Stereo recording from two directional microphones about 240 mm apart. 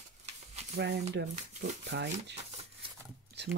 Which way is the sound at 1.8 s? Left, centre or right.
Right.